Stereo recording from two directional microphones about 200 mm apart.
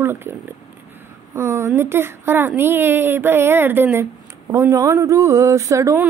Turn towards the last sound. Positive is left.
turn(degrees=-15)  # may be behind; listen again after turning